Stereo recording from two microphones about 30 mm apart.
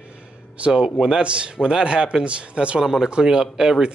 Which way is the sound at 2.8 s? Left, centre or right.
Centre.